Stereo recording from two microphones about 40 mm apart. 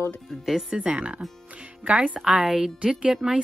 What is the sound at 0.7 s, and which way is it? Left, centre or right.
Speech, right.